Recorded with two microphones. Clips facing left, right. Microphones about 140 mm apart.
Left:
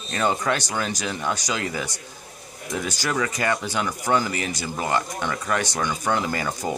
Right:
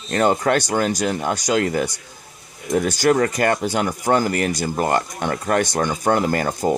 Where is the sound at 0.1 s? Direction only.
50° right (ahead or behind).